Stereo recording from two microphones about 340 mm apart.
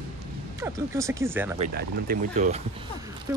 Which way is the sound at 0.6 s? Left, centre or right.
Centre.